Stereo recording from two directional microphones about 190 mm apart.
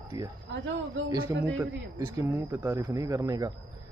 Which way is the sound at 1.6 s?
15° right (ahead or behind).